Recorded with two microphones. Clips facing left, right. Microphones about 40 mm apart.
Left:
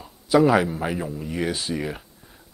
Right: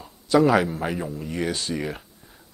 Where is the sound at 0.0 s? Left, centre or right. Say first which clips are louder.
Left 1 dB; centre.